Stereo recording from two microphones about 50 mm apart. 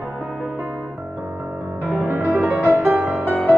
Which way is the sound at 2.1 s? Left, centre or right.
Right.